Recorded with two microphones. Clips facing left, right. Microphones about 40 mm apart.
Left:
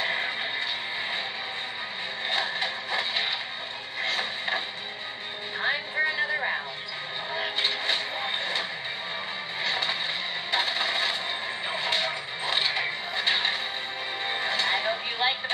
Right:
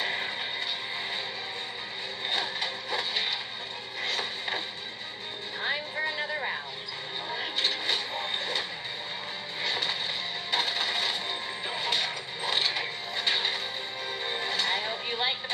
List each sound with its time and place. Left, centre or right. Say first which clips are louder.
0.0 s music: left 3 dB; centre
2.2 s a sound: left 3 dB; centre
7.3 s vehicle: left 3 dB; centre
9.6 s music: left 2 dB; centre